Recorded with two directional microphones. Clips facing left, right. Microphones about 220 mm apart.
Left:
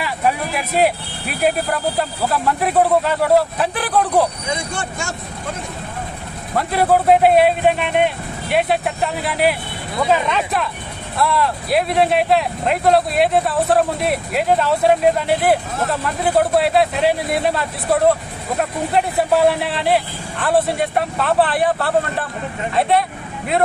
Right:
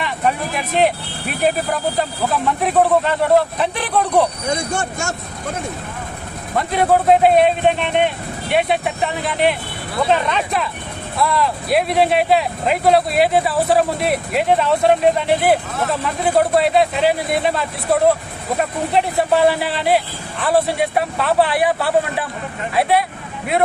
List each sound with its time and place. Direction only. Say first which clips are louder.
0.0 s speech: even; 5° left (ahead or behind)
4.5 s speech: right 3 dB; 45° right (ahead or behind)
6.5 s speech: even; 5° left (ahead or behind)